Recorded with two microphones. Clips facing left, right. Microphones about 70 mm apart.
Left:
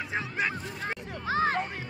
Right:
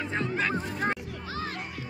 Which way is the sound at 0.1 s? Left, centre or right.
Centre.